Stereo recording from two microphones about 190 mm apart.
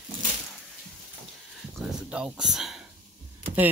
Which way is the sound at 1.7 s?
5° right (ahead or behind).